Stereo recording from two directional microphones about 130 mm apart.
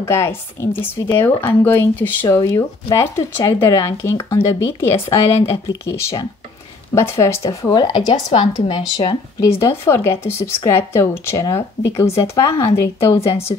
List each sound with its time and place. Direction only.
0.1 s speech: 20° left (ahead or behind)
2.2 s speech: 25° left (ahead or behind); by 9.1 s 40° left (ahead or behind)
9.4 s speech: 20° left (ahead or behind)